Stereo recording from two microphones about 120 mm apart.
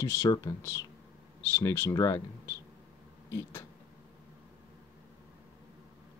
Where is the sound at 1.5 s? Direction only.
20° left (ahead or behind).